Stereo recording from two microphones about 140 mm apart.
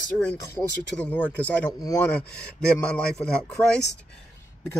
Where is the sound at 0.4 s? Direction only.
20° left (ahead or behind).